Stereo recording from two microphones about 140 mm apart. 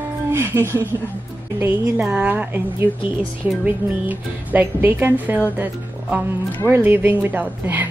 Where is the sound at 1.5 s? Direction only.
15° right (ahead or behind).